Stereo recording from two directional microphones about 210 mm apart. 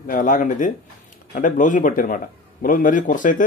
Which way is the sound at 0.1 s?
40° left (ahead or behind).